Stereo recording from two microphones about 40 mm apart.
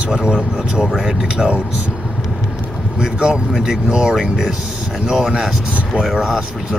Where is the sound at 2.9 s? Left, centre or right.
Centre.